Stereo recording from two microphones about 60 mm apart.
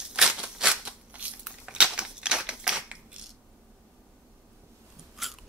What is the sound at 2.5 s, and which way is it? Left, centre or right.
Crushing, centre.